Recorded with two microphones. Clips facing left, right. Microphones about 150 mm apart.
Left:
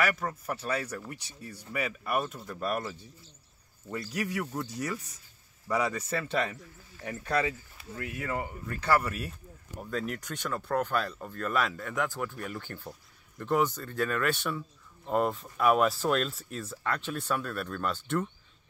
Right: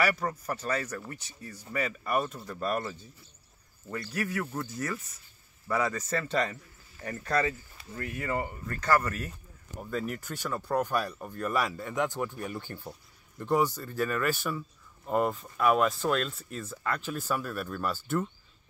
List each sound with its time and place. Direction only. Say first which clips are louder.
0.0 s speech: right 1 dB; centre (ahead or behind)
3.9 s speech: even; 15° left (ahead or behind)
9.8 s speech: even; 5° right (ahead or behind)